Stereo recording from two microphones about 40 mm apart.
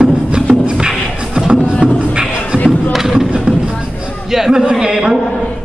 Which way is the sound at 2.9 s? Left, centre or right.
Centre.